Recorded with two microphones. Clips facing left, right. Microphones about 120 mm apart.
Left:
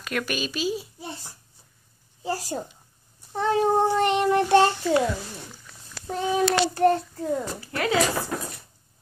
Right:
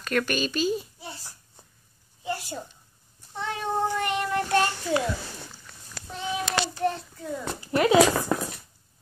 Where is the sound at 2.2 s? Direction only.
35° left (ahead or behind).